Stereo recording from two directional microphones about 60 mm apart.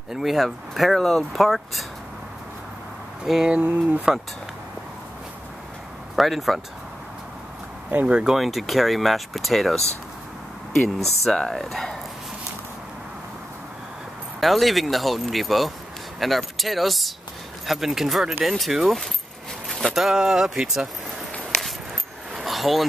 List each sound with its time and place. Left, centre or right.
0.1 s speech: centre
3.3 s speech: centre
3.5 s speech: right
6.1 s speech: centre
7.9 s speech: right
8.2 s speech: centre
14.4 s speech: centre
22.3 s a sound: centre